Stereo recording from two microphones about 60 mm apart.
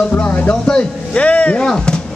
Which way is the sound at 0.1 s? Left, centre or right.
Left.